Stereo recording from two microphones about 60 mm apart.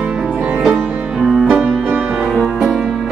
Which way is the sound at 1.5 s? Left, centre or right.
Centre.